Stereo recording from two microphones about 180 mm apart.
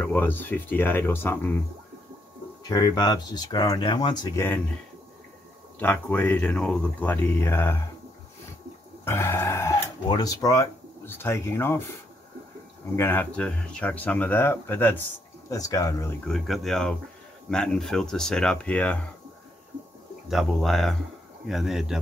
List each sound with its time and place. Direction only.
0.0 s speech: 10° left (ahead or behind)
2.7 s speech: 20° left (ahead or behind)
5.8 s speech: 10° left (ahead or behind)
9.0 s speech: 15° left (ahead or behind)
16.3 s speech: centre (ahead or behind)
20.2 s speech: centre (ahead or behind)